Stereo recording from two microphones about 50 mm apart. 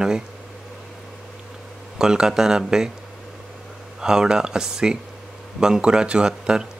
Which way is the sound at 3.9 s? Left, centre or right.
Centre.